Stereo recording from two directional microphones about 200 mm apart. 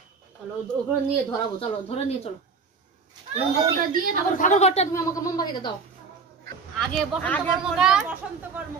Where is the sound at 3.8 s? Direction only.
45° right (ahead or behind).